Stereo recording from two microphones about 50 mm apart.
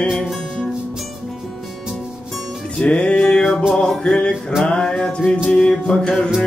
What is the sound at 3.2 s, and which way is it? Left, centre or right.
Music, centre.